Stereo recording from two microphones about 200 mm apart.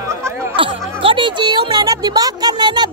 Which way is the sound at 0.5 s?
25° right (ahead or behind).